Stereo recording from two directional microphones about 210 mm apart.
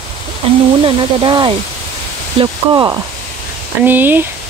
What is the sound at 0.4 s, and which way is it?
Speech, 25° right (ahead or behind).